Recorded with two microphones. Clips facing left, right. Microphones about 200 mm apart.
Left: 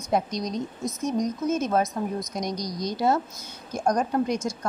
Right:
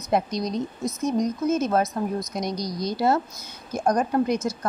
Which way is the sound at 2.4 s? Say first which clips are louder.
Right 2 dB; 15° left (ahead or behind).